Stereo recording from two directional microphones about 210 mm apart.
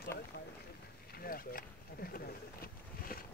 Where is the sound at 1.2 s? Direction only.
45° left (ahead or behind).